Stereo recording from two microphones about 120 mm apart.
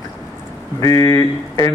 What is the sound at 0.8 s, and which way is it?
Speech, 30° left (ahead or behind).